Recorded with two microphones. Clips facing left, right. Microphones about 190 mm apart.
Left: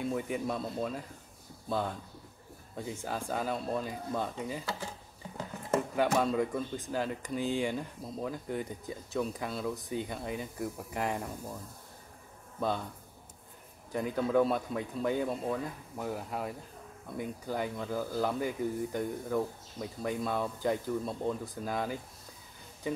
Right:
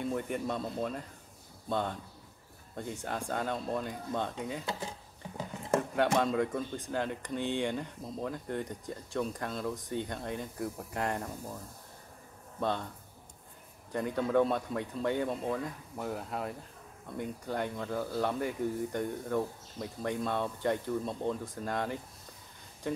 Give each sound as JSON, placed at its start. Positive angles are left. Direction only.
{"t": 0.0, "sound": "speech", "side_deg": 5}
{"t": 4.6, "sound": "speech", "side_deg": -20}
{"t": 5.7, "sound": "speech", "side_deg": 5}
{"t": 12.5, "sound": "speech", "side_deg": 5}
{"t": 13.9, "sound": "speech", "side_deg": 0}